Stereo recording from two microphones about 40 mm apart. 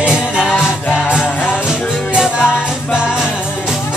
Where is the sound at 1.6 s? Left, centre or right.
Centre.